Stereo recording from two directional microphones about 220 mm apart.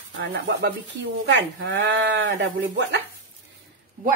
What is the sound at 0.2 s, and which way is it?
Speech, 50° right (ahead or behind).